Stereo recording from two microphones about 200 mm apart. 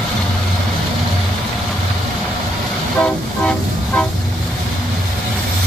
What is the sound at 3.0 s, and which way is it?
Train, 5° left (ahead or behind).